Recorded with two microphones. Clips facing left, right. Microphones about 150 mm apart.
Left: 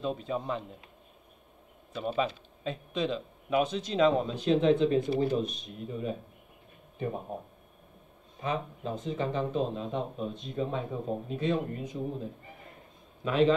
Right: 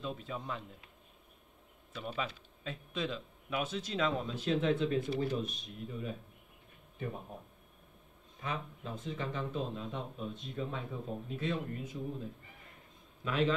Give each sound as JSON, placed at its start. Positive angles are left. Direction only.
{"t": 0.0, "sound": "speech", "side_deg": 30}
{"t": 2.0, "sound": "a man's voice", "side_deg": 25}